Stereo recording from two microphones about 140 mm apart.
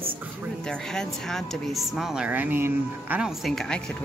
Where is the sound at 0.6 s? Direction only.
5° left (ahead or behind); by 3.3 s 15° right (ahead or behind).